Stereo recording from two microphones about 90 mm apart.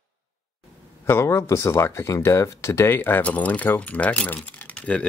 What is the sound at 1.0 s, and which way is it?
Speech, 30° left (ahead or behind).